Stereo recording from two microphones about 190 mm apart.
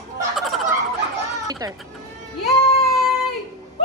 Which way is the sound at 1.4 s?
20° right (ahead or behind).